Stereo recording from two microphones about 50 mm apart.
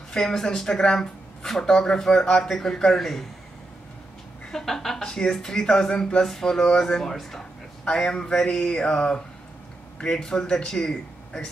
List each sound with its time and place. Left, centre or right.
0.1 s speech: centre
4.5 s speech: centre
7.8 s speech: centre